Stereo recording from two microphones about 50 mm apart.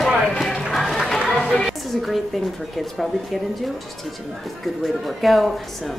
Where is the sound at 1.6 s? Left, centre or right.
Centre.